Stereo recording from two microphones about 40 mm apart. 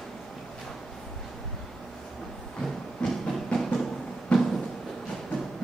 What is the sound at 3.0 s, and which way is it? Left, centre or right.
Train, left.